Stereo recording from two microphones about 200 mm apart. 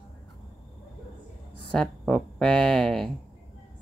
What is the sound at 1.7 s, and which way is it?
A woman's voice, 5° left (ahead or behind).